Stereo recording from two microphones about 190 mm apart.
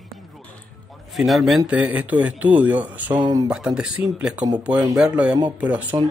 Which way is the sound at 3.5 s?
5° right (ahead or behind).